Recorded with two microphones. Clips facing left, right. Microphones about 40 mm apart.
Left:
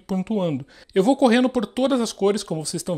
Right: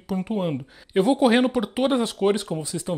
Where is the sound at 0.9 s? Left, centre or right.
Right.